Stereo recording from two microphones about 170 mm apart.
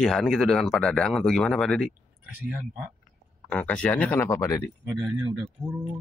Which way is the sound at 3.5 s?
10° left (ahead or behind).